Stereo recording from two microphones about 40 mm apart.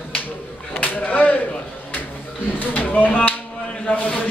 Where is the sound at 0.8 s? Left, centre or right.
Left.